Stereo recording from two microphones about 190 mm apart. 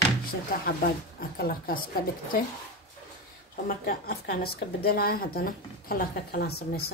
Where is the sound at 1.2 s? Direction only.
50° left (ahead or behind).